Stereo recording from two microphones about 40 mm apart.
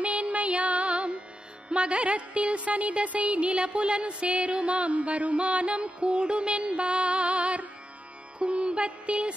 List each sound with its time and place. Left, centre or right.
0.0 s music: right